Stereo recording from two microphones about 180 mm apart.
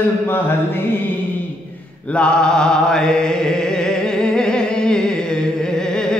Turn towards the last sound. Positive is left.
turn(degrees=5)  # may be behind; listen again after turning